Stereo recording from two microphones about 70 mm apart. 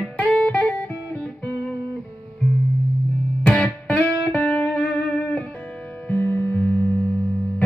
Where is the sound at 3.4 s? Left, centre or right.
Left.